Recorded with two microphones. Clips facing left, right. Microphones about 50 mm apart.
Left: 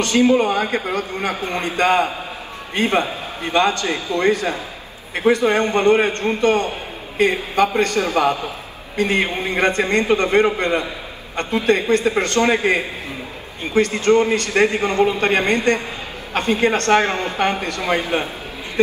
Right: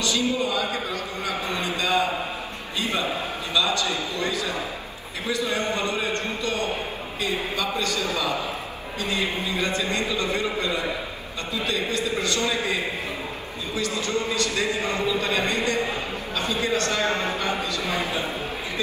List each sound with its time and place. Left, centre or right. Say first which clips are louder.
0.0 s a man's voice: left 9 dB; left